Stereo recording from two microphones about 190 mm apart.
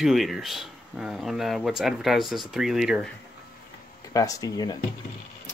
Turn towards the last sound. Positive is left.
turn(degrees=20)  # may be behind; listen again after turning